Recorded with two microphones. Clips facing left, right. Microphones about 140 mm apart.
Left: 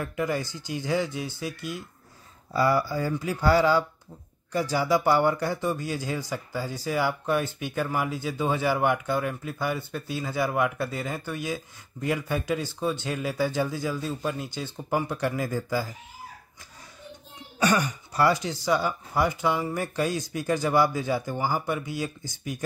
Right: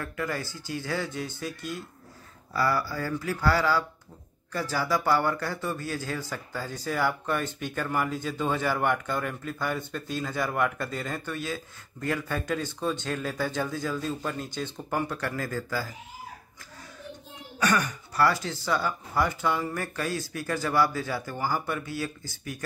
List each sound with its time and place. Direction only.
0.0 s speech: 15° left (ahead or behind)
17.6 s speech: 20° left (ahead or behind)